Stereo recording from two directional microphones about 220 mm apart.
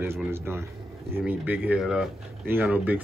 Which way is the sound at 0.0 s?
10° right (ahead or behind).